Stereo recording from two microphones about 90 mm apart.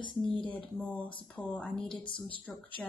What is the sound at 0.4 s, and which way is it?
Speech, 15° left (ahead or behind).